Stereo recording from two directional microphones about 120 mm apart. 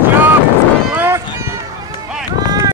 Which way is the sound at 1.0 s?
20° right (ahead or behind).